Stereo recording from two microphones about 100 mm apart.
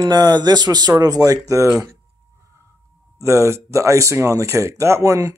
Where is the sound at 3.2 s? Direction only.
30° right (ahead or behind).